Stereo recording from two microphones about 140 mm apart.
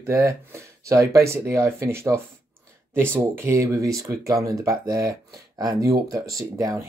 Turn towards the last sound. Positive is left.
turn(degrees=-25)  # may be behind; listen again after turning